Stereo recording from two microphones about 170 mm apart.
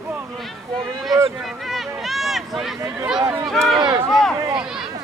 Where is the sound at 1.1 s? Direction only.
Centre (ahead or behind).